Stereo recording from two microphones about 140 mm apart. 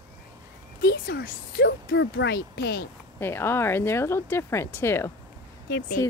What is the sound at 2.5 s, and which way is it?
Speech, 90° left.